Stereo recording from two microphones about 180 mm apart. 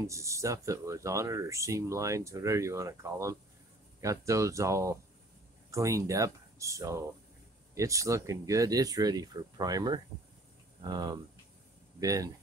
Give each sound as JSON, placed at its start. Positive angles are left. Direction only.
{"t": 0.0, "sound": "speech", "side_deg": -15}